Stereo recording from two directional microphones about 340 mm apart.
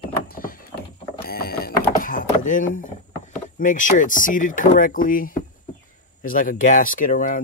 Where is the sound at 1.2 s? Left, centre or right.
Left.